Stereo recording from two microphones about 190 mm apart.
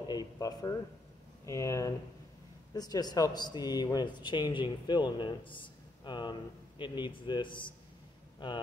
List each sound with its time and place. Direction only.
0.1 s speech: 20° left (ahead or behind)